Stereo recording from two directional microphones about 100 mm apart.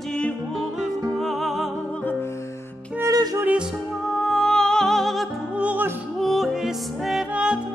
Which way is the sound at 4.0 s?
5° left (ahead or behind).